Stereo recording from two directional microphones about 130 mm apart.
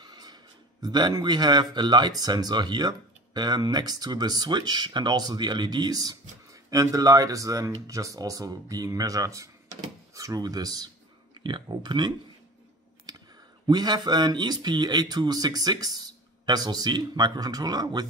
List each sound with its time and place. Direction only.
0.0 s a sound: 30° right (ahead or behind)
0.8 s speech: 30° right (ahead or behind)
13.1 s clicking: 30° right (ahead or behind)
13.7 s speech: 30° right (ahead or behind)